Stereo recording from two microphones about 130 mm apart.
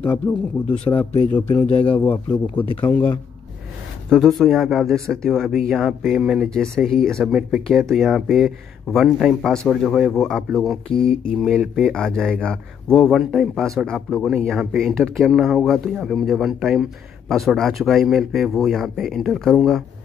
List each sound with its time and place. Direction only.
0.7 s speech: 10° left (ahead or behind)
2.6 s speech: 45° left (ahead or behind)
4.1 s a man's voice: centre (ahead or behind)